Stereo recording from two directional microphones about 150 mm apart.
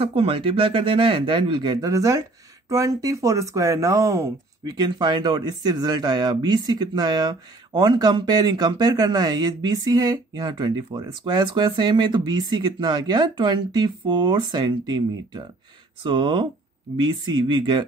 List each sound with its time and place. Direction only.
0.0 s speech: 40° right (ahead or behind)